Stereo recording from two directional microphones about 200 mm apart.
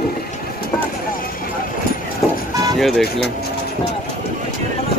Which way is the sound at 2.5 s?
20° right (ahead or behind).